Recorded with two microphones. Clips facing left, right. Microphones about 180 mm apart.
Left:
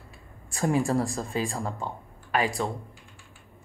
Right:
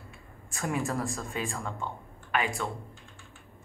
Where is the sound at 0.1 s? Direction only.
35° left (ahead or behind).